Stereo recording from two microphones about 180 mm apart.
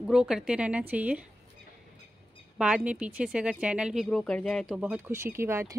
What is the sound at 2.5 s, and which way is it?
A woman's voice, 5° right (ahead or behind).